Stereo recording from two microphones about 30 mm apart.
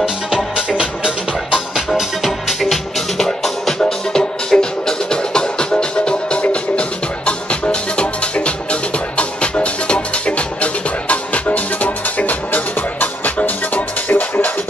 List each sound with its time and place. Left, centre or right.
0.6 s music: right
3.2 s music: centre; by 11.4 s left
11.4 s music: left
14.0 s music: left